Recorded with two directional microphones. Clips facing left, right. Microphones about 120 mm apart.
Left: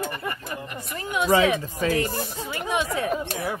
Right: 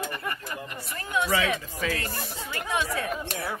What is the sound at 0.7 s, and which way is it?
Speech, 15° left (ahead or behind).